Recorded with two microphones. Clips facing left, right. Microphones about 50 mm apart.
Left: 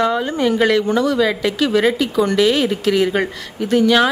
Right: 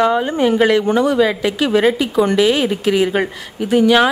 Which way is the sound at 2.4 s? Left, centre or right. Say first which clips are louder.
Right 1 dB; centre.